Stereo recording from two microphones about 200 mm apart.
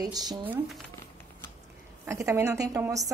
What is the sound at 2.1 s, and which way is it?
Speech, 15° right (ahead or behind).